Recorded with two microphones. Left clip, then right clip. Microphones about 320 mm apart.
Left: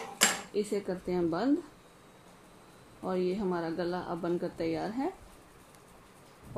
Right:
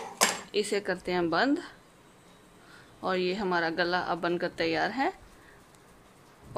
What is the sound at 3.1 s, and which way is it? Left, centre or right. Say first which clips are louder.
Speech: right 3 dB; right.